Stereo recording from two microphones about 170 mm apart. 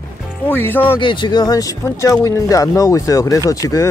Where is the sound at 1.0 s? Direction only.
30° left (ahead or behind).